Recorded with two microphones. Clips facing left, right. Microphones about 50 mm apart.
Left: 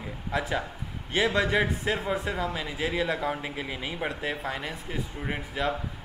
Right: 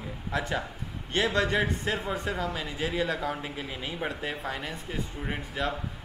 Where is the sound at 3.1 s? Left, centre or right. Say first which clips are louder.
Left 2 dB; centre.